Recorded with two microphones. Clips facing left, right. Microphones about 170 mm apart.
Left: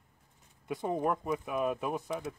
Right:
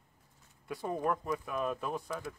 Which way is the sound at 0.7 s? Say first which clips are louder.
Left 2 dB; 20° left (ahead or behind).